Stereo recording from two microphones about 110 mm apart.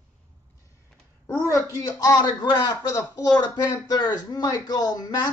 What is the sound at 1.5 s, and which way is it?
Speech, 30° left (ahead or behind).